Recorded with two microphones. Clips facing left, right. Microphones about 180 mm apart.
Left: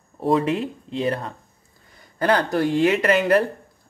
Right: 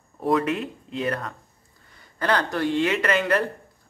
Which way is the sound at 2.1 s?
40° left (ahead or behind).